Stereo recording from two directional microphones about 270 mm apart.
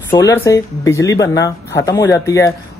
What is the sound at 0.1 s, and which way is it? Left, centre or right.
Speech, centre.